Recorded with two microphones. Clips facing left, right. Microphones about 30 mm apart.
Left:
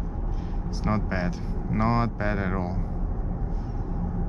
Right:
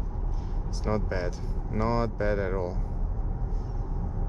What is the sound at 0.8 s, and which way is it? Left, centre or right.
Speech, centre.